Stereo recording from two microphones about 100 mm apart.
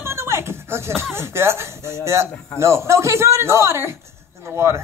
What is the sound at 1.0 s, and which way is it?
A child's voice, 25° right (ahead or behind).